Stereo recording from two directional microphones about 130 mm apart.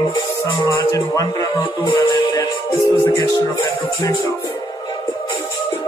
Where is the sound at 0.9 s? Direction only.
25° left (ahead or behind).